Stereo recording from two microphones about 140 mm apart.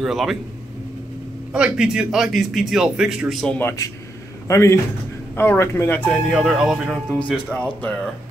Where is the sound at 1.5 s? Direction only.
5° right (ahead or behind).